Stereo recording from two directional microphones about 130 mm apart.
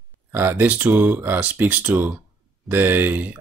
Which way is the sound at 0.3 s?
15° right (ahead or behind).